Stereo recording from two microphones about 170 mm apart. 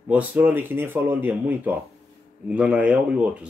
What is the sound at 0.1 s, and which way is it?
Speech, 10° right (ahead or behind).